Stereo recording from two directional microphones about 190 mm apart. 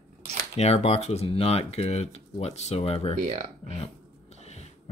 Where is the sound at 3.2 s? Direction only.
40° right (ahead or behind).